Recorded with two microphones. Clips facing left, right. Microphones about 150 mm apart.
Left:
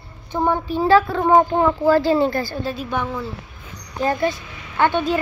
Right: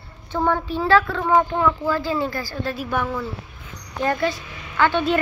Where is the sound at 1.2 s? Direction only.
35° left (ahead or behind).